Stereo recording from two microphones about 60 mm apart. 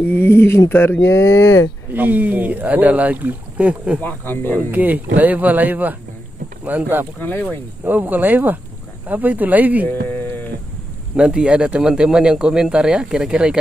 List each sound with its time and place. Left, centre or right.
0.0 s speech: left
1.1 s speech: left
2.0 s speech: right
4.0 s speech: left
4.6 s speech: right
7.2 s speech: left
7.8 s speech: right
9.8 s music: left
11.1 s speech: centre